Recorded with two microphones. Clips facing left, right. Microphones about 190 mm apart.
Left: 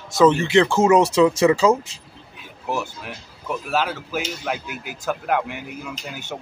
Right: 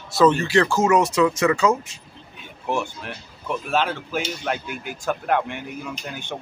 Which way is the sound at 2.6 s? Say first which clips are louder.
Right 1 dB; 5° left (ahead or behind).